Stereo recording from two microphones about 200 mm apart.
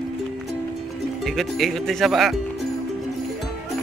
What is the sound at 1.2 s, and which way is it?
Speech, centre (ahead or behind).